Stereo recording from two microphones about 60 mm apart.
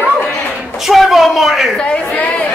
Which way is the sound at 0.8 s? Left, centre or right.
Centre.